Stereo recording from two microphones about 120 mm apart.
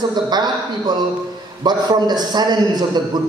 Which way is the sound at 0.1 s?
35° right (ahead or behind).